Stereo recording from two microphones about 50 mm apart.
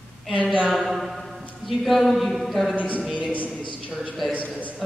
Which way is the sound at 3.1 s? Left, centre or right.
Left.